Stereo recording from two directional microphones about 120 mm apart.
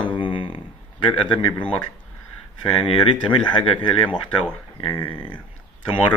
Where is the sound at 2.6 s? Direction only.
50° left (ahead or behind).